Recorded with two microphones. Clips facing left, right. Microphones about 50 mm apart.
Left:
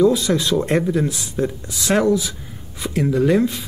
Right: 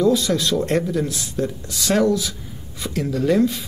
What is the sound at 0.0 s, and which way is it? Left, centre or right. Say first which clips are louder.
Speech: left 2 dB; centre.